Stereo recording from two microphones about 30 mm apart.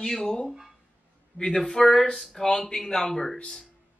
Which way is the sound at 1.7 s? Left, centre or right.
Centre.